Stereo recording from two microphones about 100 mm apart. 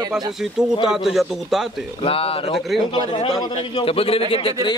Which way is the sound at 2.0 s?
70° left (ahead or behind).